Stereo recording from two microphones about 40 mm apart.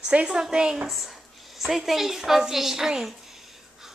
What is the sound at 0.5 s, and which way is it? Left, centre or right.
Speech, right.